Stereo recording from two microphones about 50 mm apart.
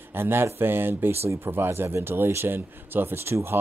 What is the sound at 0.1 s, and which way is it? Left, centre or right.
Speech, right.